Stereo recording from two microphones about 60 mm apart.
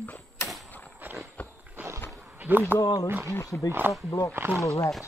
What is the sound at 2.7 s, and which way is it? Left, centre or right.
Speech, right.